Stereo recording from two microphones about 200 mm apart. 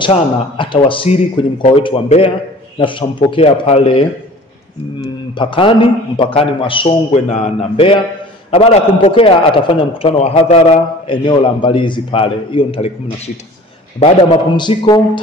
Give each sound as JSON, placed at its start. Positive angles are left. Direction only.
{"t": 0.0, "sound": "a man's voice", "side_deg": 25}
{"t": 5.3, "sound": "a man's voice", "side_deg": 25}
{"t": 13.9, "sound": "a man's voice", "side_deg": 30}